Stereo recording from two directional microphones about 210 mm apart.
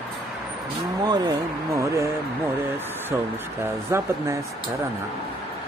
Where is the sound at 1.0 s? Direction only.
20° right (ahead or behind).